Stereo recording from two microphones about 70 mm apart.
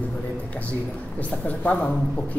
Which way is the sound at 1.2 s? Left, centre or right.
Left.